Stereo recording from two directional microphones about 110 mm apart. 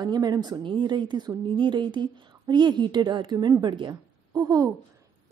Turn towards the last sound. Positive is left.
turn(degrees=-35)  # may be behind; listen again after turning